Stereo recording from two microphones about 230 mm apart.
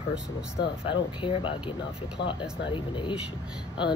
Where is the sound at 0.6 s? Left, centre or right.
Left.